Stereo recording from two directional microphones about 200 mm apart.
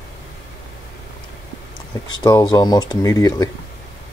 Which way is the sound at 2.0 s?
20° left (ahead or behind).